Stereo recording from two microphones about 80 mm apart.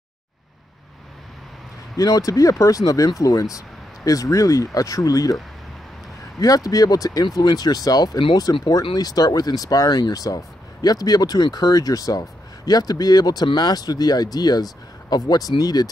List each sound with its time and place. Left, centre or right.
2.0 s speech: left
6.4 s speech: left
8.2 s speech: left
8.9 s speech: left